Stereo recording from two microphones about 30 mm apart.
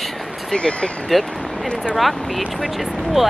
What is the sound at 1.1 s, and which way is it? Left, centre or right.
Speech, centre.